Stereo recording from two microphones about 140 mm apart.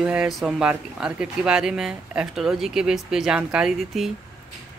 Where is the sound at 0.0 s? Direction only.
5° right (ahead or behind).